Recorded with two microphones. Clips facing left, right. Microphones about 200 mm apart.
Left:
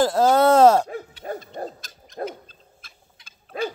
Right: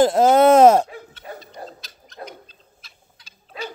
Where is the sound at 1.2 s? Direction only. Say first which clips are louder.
Left 6 dB; 40° left (ahead or behind).